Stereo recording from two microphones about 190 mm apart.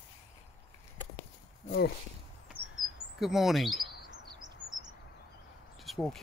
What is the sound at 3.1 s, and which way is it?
Speech, centre (ahead or behind).